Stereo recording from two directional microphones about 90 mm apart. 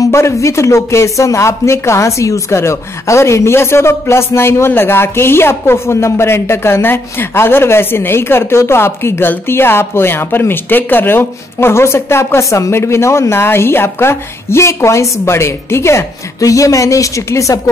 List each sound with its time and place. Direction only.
0.0 s speech: 35° left (ahead or behind)